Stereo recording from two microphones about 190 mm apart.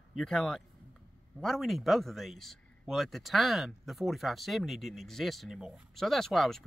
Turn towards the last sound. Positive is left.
turn(degrees=0)  # may be behind; listen again after turning